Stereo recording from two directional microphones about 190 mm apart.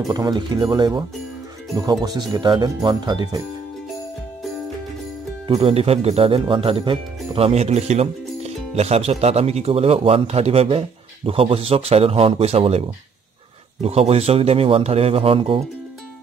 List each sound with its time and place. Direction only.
0.1 s speech: 20° right (ahead or behind)
5.5 s speech: 30° right (ahead or behind)